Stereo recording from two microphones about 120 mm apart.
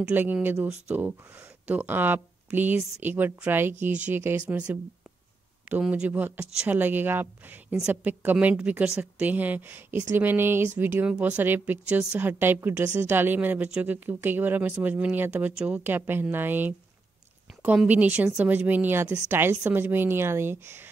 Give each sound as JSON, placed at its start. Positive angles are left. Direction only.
{"t": 0.0, "sound": "a woman's voice", "side_deg": -15}